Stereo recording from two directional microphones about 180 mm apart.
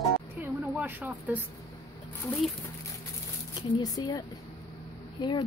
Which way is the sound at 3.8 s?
20° left (ahead or behind).